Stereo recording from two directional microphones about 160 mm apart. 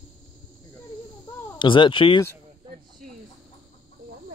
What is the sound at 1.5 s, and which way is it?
Speech, 30° left (ahead or behind).